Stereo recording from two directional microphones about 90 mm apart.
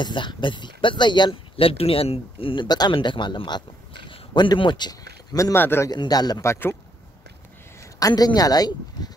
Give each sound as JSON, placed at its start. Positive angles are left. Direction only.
{"t": 0.0, "sound": "speech", "side_deg": 60}
{"t": 2.9, "sound": "speech", "side_deg": 60}
{"t": 5.4, "sound": "speech", "side_deg": 25}
{"t": 5.9, "sound": "speech", "side_deg": 50}
{"t": 6.4, "sound": "speech", "side_deg": 30}
{"t": 8.0, "sound": "speech", "side_deg": 50}